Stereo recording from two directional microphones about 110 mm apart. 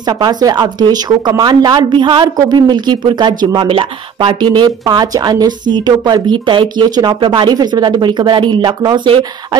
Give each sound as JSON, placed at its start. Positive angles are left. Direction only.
{"t": 0.2, "sound": "a woman's voice", "side_deg": -35}